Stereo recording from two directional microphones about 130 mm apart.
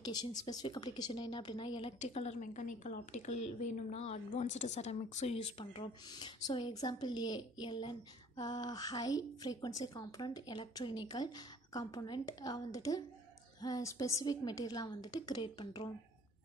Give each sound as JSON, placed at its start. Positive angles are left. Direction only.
{"t": 0.0, "sound": "a woman's voice", "side_deg": 30}
{"t": 5.1, "sound": "speech", "side_deg": 55}
{"t": 6.0, "sound": "a woman's voice", "side_deg": 35}